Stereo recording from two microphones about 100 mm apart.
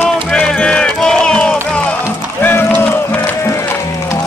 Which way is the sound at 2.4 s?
20° left (ahead or behind).